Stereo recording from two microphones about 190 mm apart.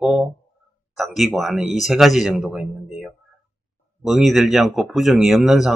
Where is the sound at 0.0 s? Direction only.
Centre (ahead or behind).